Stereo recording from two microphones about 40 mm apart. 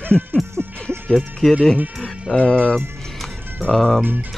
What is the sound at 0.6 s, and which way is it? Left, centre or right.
Music, right.